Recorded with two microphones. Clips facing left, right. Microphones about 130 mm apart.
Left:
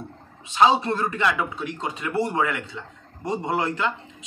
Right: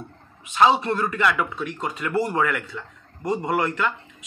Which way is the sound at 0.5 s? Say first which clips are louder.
Even; 25° left (ahead or behind).